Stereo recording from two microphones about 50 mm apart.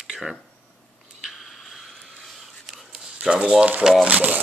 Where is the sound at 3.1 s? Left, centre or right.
Right.